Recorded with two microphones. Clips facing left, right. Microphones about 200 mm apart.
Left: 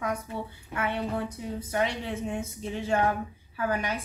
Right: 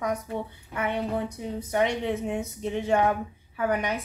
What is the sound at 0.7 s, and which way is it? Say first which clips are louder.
A woman's voice: right 2 dB; 15° right (ahead or behind).